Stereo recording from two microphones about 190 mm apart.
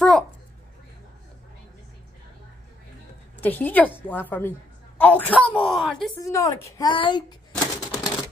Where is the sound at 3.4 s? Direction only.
10° left (ahead or behind).